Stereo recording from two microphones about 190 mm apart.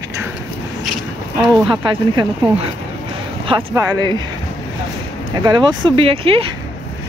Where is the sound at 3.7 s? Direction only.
20° right (ahead or behind).